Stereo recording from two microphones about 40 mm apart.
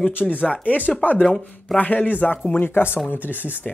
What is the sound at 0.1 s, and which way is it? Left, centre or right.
Speech, left.